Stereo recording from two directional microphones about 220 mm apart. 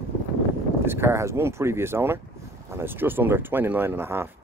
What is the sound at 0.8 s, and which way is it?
Speech, 10° right (ahead or behind).